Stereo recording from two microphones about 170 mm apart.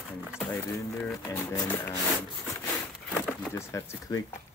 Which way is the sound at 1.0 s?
10° left (ahead or behind).